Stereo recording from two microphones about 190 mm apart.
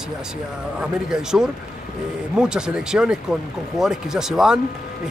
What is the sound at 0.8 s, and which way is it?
Speech, 5° right (ahead or behind).